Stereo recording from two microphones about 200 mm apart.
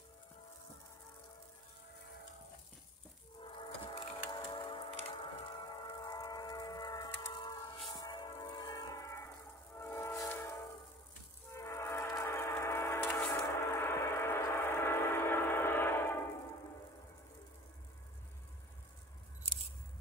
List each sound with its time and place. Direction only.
3.4 s wood: 25° left (ahead or behind)
9.8 s train: 15° left (ahead or behind)